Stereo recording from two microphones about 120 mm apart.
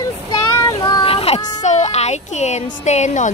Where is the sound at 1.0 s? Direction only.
55° left (ahead or behind).